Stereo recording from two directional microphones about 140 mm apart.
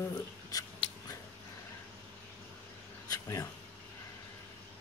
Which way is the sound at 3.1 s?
25° left (ahead or behind).